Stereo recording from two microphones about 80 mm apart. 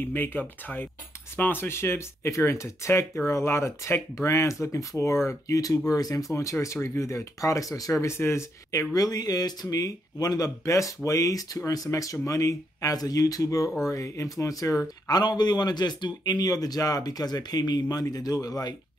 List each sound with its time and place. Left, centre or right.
0.1 s speech: left
15.0 s speech: left